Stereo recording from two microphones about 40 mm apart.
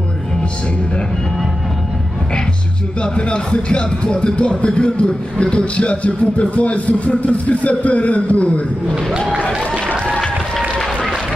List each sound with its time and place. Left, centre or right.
3.0 s speech: left